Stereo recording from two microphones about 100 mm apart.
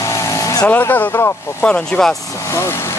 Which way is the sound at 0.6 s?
20° left (ahead or behind).